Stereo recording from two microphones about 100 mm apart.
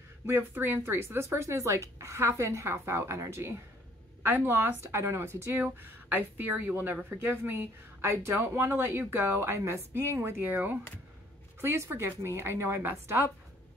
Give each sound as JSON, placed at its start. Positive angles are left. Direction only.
{"t": 0.3, "sound": "speech", "side_deg": -25}